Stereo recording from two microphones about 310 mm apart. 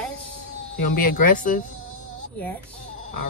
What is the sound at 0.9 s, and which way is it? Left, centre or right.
Speech, left.